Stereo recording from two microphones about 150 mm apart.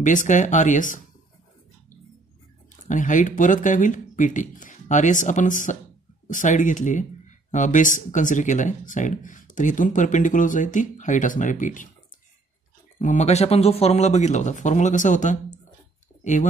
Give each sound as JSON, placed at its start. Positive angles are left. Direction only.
{"t": 0.0, "sound": "speech", "side_deg": 55}
{"t": 2.9, "sound": "speech", "side_deg": 60}
{"t": 13.0, "sound": "speech", "side_deg": 50}